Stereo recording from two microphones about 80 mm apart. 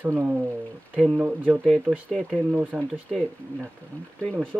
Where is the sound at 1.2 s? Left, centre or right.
Right.